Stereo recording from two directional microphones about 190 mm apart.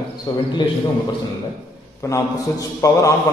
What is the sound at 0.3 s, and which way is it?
Speech, 20° left (ahead or behind).